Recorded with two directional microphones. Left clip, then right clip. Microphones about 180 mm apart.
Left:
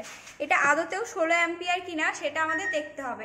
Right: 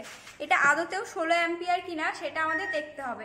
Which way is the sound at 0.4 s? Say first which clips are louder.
Even; 30° left (ahead or behind).